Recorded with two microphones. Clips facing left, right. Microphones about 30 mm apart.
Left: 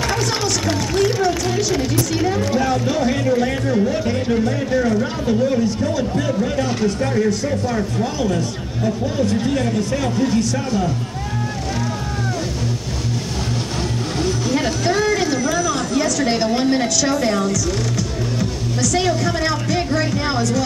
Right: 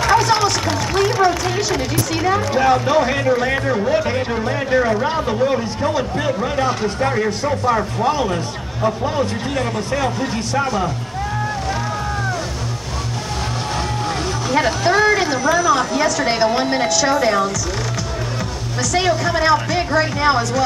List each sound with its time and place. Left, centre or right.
0.1 s a sound: centre
1.2 s music: right
2.2 s speech: right
10.0 s a woman's voice: centre
14.5 s a woman's voice: centre
18.8 s a woman's voice: centre